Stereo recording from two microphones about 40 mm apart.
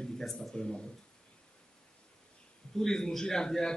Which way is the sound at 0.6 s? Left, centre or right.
Left.